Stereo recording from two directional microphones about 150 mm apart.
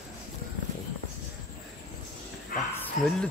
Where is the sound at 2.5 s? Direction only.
75° left (ahead or behind).